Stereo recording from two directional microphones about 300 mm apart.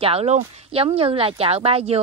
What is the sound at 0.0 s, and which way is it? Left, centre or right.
A woman's voice, right.